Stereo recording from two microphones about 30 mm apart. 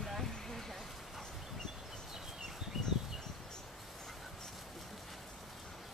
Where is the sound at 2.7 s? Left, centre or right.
Centre.